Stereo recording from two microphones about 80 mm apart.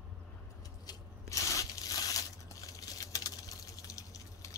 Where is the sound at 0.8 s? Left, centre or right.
Left.